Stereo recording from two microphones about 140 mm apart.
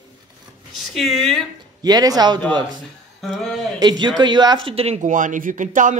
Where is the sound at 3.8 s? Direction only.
30° right (ahead or behind).